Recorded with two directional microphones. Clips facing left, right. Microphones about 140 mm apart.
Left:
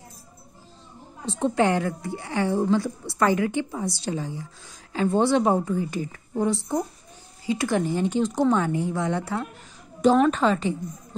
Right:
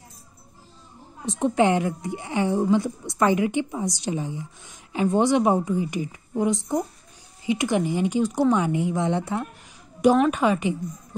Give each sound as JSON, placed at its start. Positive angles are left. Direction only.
{"t": 1.2, "sound": "a woman's voice", "side_deg": -15}
{"t": 10.1, "sound": "a woman's voice", "side_deg": -10}